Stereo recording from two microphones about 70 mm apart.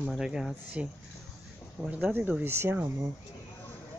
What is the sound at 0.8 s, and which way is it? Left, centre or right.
Speech, centre.